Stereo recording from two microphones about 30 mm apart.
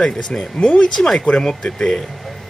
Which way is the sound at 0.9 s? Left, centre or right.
Centre.